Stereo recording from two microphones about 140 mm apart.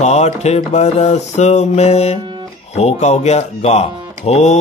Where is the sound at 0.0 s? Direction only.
55° left (ahead or behind).